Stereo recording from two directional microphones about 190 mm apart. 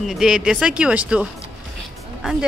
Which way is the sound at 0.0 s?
Centre (ahead or behind).